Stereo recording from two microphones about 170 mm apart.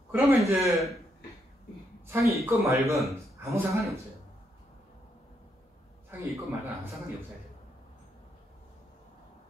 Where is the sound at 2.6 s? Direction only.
15° right (ahead or behind).